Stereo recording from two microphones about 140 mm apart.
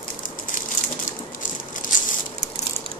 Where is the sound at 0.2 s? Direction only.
70° left (ahead or behind).